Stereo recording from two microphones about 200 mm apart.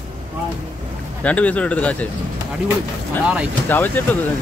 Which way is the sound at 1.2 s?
5° left (ahead or behind).